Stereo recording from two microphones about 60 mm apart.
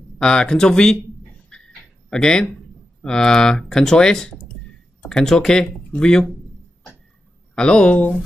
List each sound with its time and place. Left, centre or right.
0.2 s speech: centre
1.5 s a sound: centre
2.0 s speech: centre
7.5 s speech: centre